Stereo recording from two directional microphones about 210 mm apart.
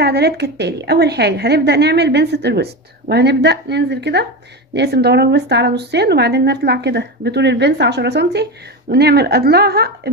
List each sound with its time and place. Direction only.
0.0 s a woman's voice: 50° right (ahead or behind)